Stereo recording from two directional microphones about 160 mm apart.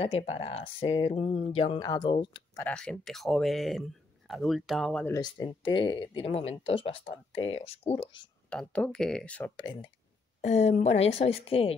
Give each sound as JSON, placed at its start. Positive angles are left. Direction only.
{"t": 0.3, "sound": "speech", "side_deg": 35}
{"t": 1.8, "sound": "speech", "side_deg": 25}
{"t": 2.5, "sound": "speech", "side_deg": 10}
{"t": 5.0, "sound": "speech", "side_deg": 25}
{"t": 8.5, "sound": "speech", "side_deg": 5}
{"t": 9.6, "sound": "speech", "side_deg": 25}
{"t": 10.4, "sound": "speech", "side_deg": 45}